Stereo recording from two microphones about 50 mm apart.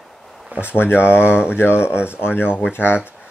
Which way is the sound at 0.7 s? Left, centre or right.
Left.